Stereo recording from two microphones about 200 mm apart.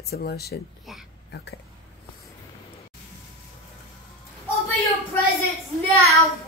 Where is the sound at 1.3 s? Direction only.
55° left (ahead or behind).